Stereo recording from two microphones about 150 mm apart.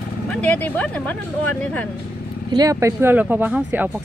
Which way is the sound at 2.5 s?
25° right (ahead or behind).